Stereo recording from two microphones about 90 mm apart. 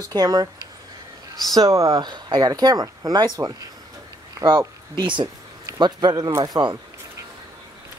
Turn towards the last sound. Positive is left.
turn(degrees=-50)  # may be behind; listen again after turning